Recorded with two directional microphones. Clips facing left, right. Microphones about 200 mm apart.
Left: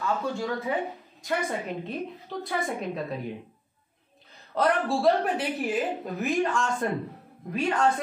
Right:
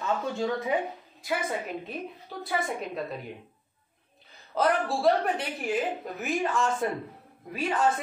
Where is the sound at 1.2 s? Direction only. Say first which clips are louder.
Left 1 dB; 5° right (ahead or behind).